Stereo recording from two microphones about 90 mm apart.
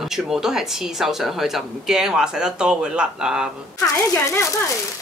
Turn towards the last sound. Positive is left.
turn(degrees=35)  # may be behind; listen again after turning